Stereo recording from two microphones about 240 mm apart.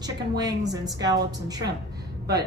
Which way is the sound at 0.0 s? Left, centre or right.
Centre.